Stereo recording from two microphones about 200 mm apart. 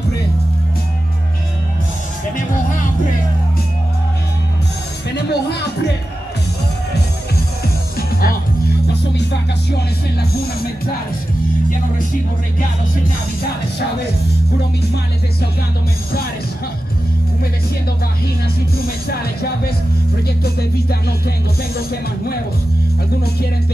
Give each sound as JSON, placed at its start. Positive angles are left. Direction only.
{"t": 5.1, "sound": "music", "side_deg": 55}
{"t": 19.0, "sound": "speech", "side_deg": 50}